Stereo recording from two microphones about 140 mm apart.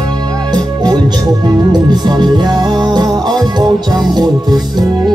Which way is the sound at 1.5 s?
30° right (ahead or behind).